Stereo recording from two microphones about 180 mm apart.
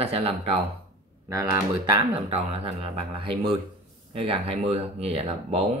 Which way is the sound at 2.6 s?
35° right (ahead or behind).